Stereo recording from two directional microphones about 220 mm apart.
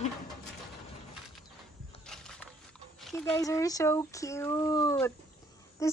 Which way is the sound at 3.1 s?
10° left (ahead or behind).